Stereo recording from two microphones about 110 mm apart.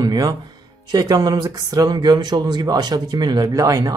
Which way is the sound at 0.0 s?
35° right (ahead or behind).